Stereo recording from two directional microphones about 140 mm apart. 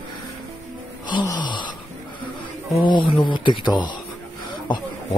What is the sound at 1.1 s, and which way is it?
Wail, 30° left (ahead or behind).